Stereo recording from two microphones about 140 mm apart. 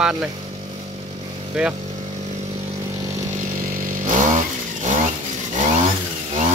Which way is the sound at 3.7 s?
70° right (ahead or behind).